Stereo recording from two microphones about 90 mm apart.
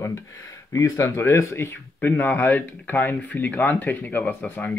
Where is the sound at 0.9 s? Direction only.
30° left (ahead or behind).